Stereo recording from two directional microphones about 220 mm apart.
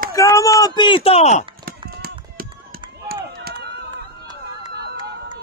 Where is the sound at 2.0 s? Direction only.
45° right (ahead or behind).